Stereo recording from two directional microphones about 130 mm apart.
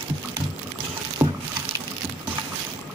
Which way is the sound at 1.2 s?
30° right (ahead or behind).